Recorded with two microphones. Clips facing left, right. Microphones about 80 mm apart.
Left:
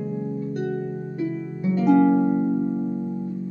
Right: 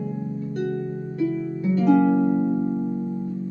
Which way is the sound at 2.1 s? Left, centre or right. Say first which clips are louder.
Even; left.